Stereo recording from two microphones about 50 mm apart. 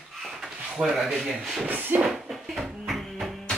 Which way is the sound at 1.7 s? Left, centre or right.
Right.